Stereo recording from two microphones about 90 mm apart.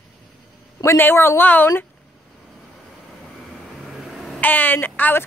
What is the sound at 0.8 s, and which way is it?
Speech, 25° left (ahead or behind).